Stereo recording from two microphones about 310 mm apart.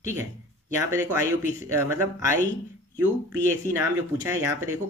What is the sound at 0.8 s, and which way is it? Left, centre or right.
Speech, centre.